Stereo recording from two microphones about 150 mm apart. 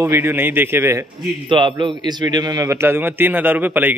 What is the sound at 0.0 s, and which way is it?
A man's voice, 15° right (ahead or behind).